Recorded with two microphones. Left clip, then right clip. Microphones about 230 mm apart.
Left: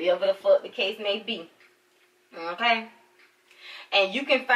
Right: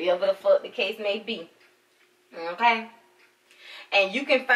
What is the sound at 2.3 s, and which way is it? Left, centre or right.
Speech, centre.